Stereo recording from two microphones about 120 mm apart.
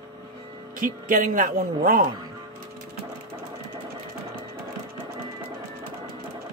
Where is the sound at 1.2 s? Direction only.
90° right.